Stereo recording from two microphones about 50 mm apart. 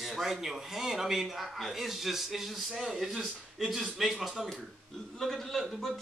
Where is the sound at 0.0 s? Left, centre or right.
Centre.